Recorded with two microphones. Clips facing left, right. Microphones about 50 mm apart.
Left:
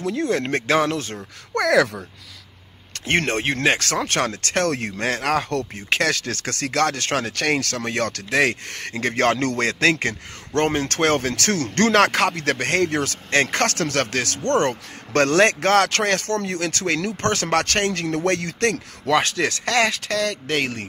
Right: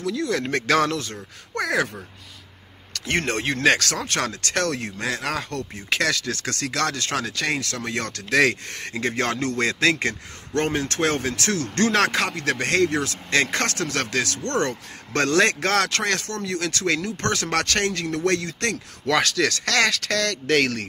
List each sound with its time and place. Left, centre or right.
0.0 s speech: left
1.5 s speech: left
2.9 s a man's voice: left
5.8 s speech: left
8.3 s a man's voice: left
14.4 s speech: left
14.7 s speech: left
19.0 s speech: left